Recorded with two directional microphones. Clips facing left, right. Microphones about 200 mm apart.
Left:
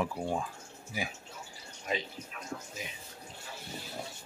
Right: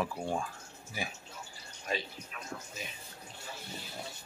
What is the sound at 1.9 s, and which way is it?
Speech, 20° left (ahead or behind).